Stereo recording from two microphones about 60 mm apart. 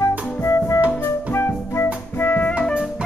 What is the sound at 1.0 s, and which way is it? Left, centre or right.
Music, left.